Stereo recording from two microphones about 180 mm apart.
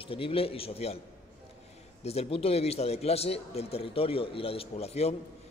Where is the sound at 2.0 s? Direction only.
35° left (ahead or behind).